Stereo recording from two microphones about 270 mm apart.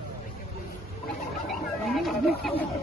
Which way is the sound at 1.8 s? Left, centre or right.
Centre.